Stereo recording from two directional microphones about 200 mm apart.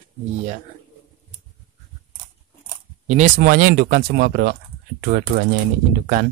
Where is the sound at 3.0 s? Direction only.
35° right (ahead or behind).